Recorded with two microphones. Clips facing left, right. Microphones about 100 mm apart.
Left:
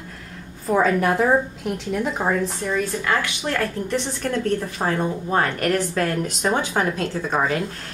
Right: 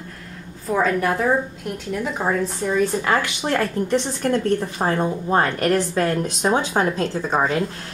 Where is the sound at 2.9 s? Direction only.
30° right (ahead or behind).